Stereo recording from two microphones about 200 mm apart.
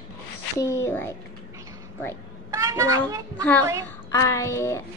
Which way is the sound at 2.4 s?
15° right (ahead or behind).